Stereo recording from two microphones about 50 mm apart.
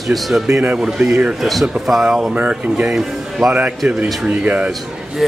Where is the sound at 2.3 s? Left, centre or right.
Right.